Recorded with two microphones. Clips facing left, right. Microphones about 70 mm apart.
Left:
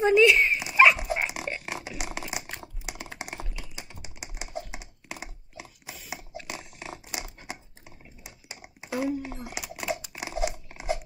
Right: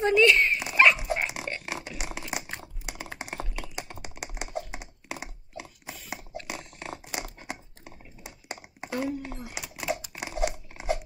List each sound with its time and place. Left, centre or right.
0.0 s dog: centre
2.6 s typing: centre
3.2 s computer keyboard: centre
3.5 s typing: right
4.5 s a sound: centre
8.5 s a sound: right
8.9 s crumpling: centre